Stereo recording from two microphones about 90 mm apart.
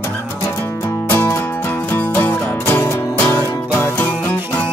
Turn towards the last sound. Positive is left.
turn(degrees=20)  # may be behind; listen again after turning